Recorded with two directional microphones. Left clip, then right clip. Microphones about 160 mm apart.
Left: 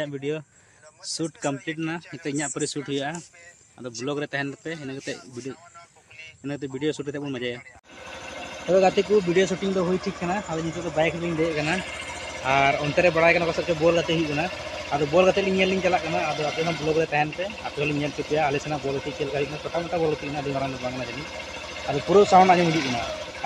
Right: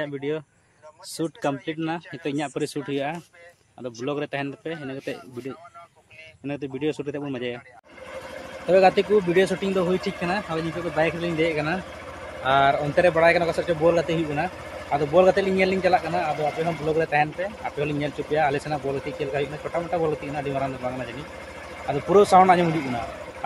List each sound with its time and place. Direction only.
0.0 s speech: 15° left (ahead or behind)
1.0 s a man's voice: centre (ahead or behind)
6.4 s a man's voice: centre (ahead or behind)
8.6 s a man's voice: 5° right (ahead or behind)